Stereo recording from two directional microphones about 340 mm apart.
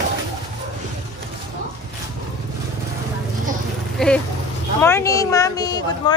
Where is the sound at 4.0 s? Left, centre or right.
Centre.